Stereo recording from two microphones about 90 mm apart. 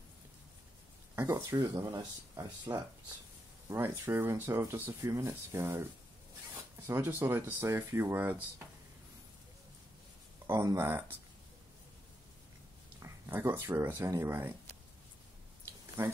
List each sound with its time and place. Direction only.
1.3 s speech: 40° right (ahead or behind); by 8.4 s 20° right (ahead or behind)
10.4 s speech: 35° right (ahead or behind)
13.0 s speech: 25° right (ahead or behind)
16.0 s speech: 25° right (ahead or behind)